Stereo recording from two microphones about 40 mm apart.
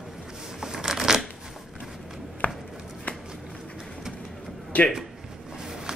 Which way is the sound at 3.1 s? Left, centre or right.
Left.